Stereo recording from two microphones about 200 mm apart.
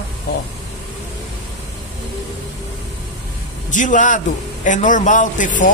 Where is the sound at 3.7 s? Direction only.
40° left (ahead or behind).